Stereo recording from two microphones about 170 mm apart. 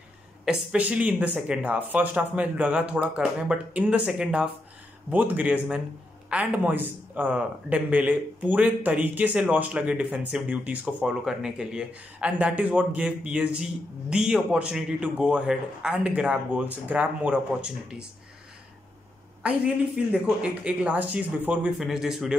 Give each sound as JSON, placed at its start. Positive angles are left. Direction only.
{"t": 0.5, "sound": "speech", "side_deg": -5}
{"t": 19.4, "sound": "speech", "side_deg": -5}